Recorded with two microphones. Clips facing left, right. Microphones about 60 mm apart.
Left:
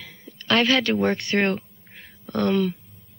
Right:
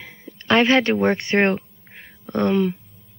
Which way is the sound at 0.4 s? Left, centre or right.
Right.